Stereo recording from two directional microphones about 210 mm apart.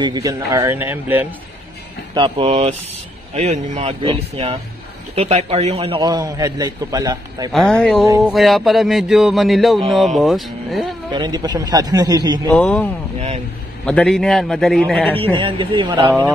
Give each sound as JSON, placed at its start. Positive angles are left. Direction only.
{"t": 0.0, "sound": "a man's voice", "side_deg": -20}
{"t": 2.1, "sound": "a man's voice", "side_deg": -25}
{"t": 3.8, "sound": "a man's voice", "side_deg": -25}
{"t": 7.5, "sound": "speech", "side_deg": 0}
{"t": 11.1, "sound": "a man's voice", "side_deg": -20}
{"t": 12.4, "sound": "a man's voice", "side_deg": 5}
{"t": 15.3, "sound": "a man's voice", "side_deg": -25}